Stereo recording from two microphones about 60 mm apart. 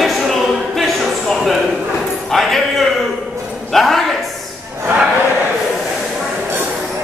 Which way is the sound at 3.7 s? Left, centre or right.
Centre.